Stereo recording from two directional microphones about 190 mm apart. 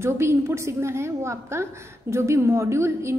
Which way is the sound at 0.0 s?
15° right (ahead or behind).